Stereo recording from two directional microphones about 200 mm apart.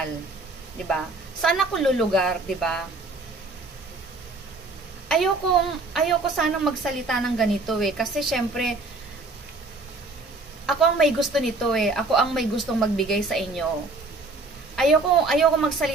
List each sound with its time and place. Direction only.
1.4 s a woman's voice: centre (ahead or behind)
5.0 s a sound: centre (ahead or behind)
5.9 s a woman's voice: centre (ahead or behind)
10.7 s a woman's voice: centre (ahead or behind)
14.8 s a woman's voice: centre (ahead or behind)